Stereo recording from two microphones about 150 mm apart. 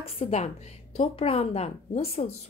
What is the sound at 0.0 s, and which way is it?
Speech, 45° left (ahead or behind).